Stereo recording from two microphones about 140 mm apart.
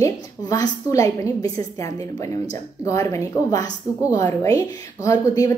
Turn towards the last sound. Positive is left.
turn(degrees=25)  # may be behind; listen again after turning